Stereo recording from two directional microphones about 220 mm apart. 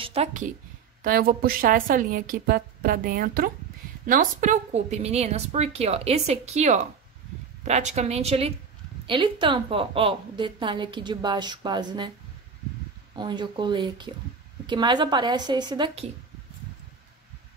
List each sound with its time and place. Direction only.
0.0 s a woman's voice: 25° right (ahead or behind)
1.0 s a woman's voice: 40° right (ahead or behind); by 12.1 s 20° right (ahead or behind)
13.1 s a woman's voice: 20° right (ahead or behind)